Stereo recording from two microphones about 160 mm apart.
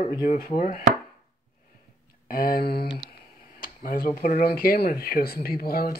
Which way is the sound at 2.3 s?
65° left (ahead or behind).